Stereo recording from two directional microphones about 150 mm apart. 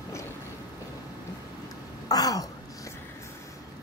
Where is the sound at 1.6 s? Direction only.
25° left (ahead or behind).